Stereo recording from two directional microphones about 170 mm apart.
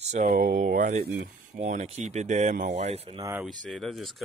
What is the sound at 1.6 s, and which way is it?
Speech, 45° right (ahead or behind).